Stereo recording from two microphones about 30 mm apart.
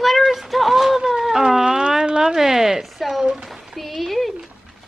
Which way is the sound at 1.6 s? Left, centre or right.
Right.